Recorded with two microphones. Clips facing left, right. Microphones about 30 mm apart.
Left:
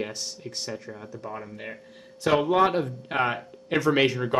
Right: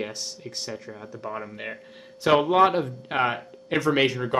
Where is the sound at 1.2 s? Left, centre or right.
Right.